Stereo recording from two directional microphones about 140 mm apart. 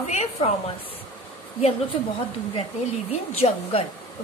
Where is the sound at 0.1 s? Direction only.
55° left (ahead or behind).